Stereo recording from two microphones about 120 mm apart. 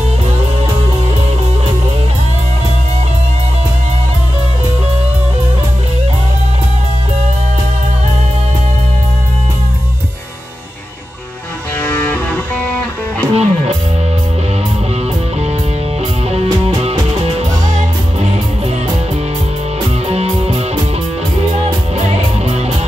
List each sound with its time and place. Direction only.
11.8 s music: 15° left (ahead or behind)
13.3 s music: 60° right (ahead or behind)
16.3 s music: 60° right (ahead or behind)
20.1 s music: 55° right (ahead or behind)